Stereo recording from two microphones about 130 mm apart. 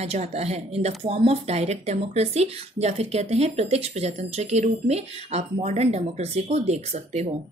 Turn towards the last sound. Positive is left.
turn(degrees=-60)  # may be behind; listen again after turning